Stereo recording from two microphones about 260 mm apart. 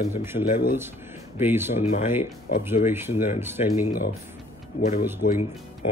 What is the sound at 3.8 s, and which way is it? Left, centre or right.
Speech, left.